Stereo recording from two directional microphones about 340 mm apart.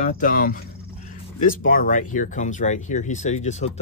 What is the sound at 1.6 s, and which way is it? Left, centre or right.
Speech, left.